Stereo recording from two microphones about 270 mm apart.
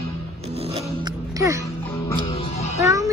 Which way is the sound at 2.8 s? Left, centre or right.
Centre.